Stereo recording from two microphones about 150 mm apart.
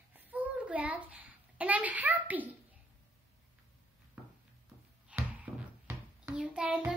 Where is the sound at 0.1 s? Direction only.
10° right (ahead or behind).